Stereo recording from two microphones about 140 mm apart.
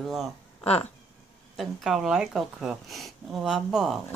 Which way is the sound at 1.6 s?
Centre (ahead or behind).